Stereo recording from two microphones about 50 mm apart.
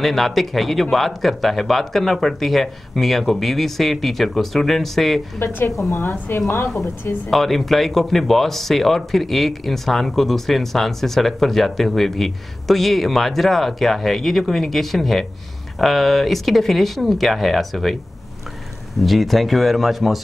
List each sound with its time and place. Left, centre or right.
0.0 s speech: centre
5.4 s a woman's voice: left
7.2 s speech: centre
19.0 s speech: centre